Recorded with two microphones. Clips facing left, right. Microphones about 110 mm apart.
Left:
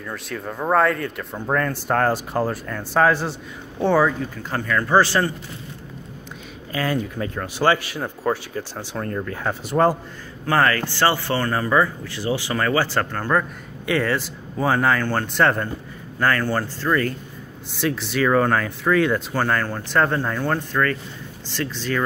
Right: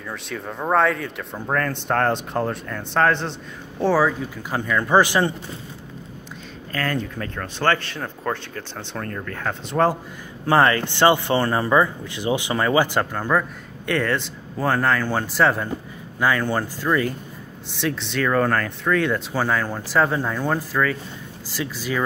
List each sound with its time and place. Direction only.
0.0 s speech: centre (ahead or behind); by 5.3 s 15° right (ahead or behind)
6.7 s speech: 10° left (ahead or behind)
10.4 s speech: 20° right (ahead or behind)
13.4 s speech: 5° left (ahead or behind); by 17.1 s 15° right (ahead or behind)
17.6 s speech: centre (ahead or behind)